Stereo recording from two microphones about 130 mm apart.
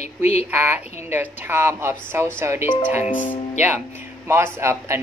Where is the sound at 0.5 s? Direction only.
15° right (ahead or behind).